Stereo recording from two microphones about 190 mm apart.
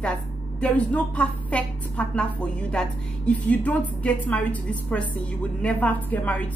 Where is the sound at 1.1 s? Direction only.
5° left (ahead or behind).